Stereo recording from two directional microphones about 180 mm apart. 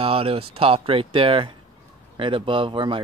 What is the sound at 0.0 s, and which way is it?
Speech, 30° right (ahead or behind).